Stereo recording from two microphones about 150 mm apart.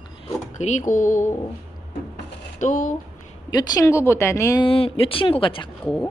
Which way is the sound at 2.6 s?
55° left (ahead or behind).